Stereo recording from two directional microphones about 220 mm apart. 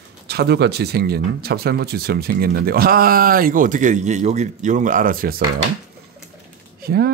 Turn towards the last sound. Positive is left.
turn(degrees=-45)  # may be behind; listen again after turning